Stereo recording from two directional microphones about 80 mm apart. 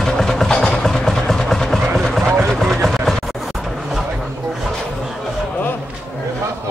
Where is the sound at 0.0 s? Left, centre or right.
Centre.